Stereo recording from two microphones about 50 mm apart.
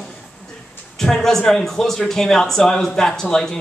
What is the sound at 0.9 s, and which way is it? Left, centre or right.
Speech, centre.